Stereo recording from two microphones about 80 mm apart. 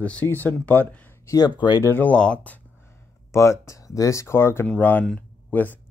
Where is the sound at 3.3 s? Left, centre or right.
Left.